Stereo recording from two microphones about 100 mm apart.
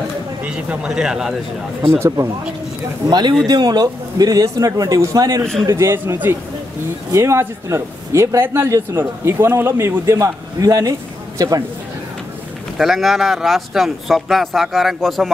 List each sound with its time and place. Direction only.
0.4 s speech: 10° right (ahead or behind)
2.0 s a man's voice: 30° right (ahead or behind)
3.1 s a man's voice: 50° right (ahead or behind)
5.4 s speech: 5° left (ahead or behind)
5.7 s speech: 30° right (ahead or behind)
7.2 s speech: 30° right (ahead or behind)
12.7 s speech: centre (ahead or behind)